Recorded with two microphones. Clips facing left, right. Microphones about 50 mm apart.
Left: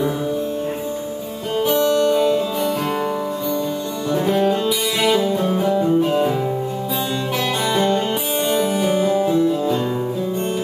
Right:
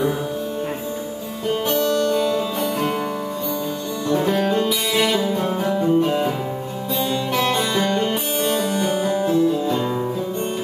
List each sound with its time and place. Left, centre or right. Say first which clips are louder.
2.0 s music: left 3 dB; centre
4.1 s music: left 1 dB; centre
7.3 s music: left 1 dB; centre